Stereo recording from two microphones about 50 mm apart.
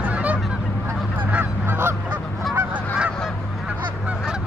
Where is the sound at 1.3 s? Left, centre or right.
Right.